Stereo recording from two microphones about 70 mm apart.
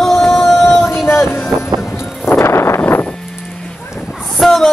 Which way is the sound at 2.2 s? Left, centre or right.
Left.